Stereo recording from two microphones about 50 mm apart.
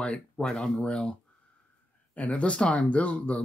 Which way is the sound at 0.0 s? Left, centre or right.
Centre.